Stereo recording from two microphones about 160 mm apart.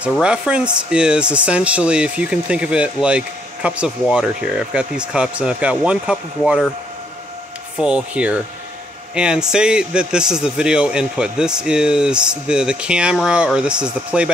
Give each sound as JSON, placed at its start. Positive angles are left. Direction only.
{"t": 0.2, "sound": "a man's voice", "side_deg": -5}
{"t": 7.7, "sound": "a man's voice", "side_deg": -5}